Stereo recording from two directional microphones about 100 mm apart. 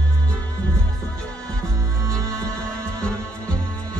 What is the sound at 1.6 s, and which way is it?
Music, 30° right (ahead or behind).